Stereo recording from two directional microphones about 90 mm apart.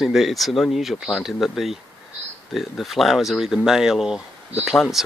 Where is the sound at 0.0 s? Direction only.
Centre (ahead or behind).